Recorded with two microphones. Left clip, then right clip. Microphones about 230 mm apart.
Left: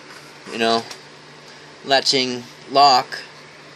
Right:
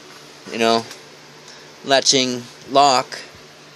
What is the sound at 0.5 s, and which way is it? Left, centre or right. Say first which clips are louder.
Speech: right 2 dB; right.